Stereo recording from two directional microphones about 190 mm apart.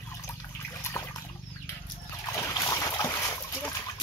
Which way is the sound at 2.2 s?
15° left (ahead or behind).